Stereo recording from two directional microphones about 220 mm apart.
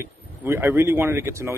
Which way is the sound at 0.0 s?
10° right (ahead or behind).